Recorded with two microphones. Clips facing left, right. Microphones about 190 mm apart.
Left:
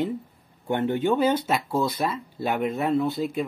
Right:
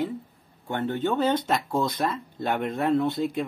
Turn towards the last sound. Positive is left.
turn(degrees=0)  # may be behind; listen again after turning